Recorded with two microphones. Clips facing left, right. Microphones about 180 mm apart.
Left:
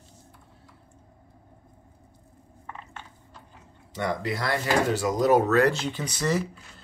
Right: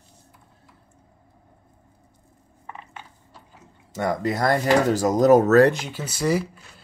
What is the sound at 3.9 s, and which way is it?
Speech, 45° right (ahead or behind).